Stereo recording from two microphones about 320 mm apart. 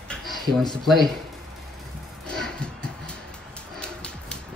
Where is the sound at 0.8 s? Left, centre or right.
Centre.